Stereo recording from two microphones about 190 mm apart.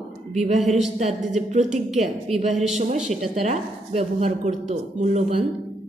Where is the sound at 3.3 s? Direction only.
35° right (ahead or behind).